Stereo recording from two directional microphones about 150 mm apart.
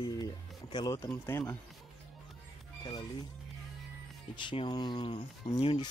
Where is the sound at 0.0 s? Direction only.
30° left (ahead or behind).